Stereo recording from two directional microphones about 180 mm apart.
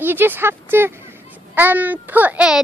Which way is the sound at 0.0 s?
10° right (ahead or behind).